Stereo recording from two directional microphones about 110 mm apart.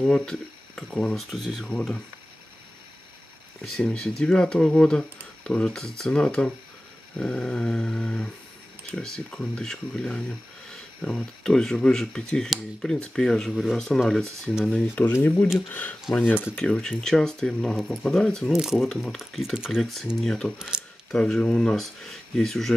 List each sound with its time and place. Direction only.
0.0 s speech: 5° left (ahead or behind)
3.6 s speech: 5° left (ahead or behind)
15.0 s speech: 15° left (ahead or behind)